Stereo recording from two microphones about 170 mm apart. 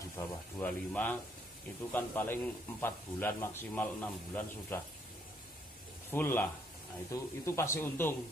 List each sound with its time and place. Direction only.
0.6 s a man's voice: 10° left (ahead or behind)
6.0 s a man's voice: 10° left (ahead or behind)